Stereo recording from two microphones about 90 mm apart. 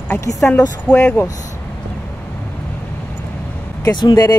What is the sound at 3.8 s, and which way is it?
Speech, 45° left (ahead or behind).